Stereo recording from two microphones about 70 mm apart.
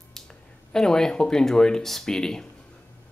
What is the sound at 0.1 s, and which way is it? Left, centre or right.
Speech, centre.